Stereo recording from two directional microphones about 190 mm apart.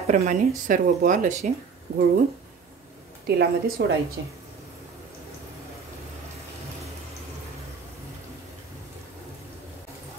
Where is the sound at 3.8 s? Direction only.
60° right (ahead or behind).